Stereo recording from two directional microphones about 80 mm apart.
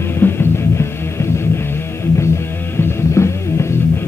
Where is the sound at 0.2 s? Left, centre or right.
Left.